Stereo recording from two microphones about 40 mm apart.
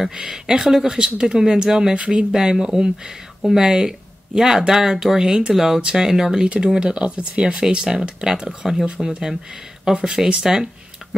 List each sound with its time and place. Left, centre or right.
0.1 s speech: centre
0.9 s speech: right
1.2 s speech: centre
2.0 s speech: right
2.3 s speech: centre
9.9 s speech: right